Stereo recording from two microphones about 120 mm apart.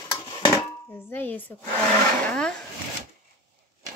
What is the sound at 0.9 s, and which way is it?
Speech, 20° left (ahead or behind).